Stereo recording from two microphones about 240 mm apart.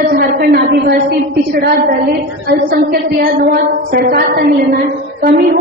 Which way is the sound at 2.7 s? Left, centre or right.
Right.